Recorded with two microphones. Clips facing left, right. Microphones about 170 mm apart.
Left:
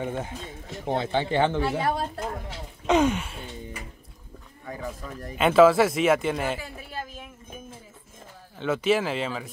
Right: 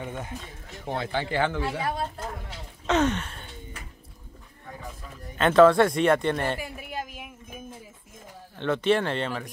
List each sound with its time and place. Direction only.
0.0 s speech: 30° left (ahead or behind)
2.9 s gasp: 10° left (ahead or behind)
5.4 s speech: 5° left (ahead or behind)
6.6 s a sound: 15° right (ahead or behind)
8.5 s speech: 5° left (ahead or behind)